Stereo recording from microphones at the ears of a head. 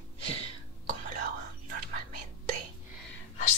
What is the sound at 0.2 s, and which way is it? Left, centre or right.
Whispering, right.